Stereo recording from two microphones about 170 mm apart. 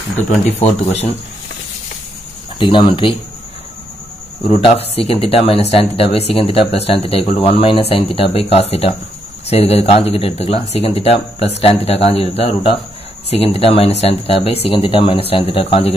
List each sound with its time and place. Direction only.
0.6 s speech: 40° left (ahead or behind)
2.6 s speech: 30° left (ahead or behind)
4.5 s speech: 35° left (ahead or behind)